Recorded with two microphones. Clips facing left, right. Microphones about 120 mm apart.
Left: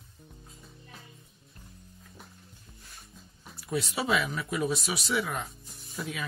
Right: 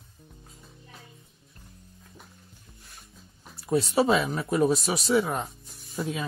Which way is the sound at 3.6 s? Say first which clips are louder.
Right 8 dB; 35° right (ahead or behind).